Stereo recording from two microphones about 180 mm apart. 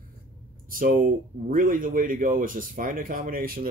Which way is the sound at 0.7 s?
50° right (ahead or behind).